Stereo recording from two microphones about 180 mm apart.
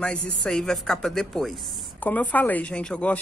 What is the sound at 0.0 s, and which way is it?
A woman's voice, 5° left (ahead or behind).